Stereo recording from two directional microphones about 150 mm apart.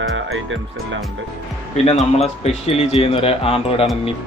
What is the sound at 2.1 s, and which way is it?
Speech, 45° left (ahead or behind).